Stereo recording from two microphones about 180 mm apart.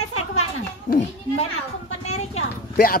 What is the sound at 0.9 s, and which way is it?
Speech, 45° left (ahead or behind).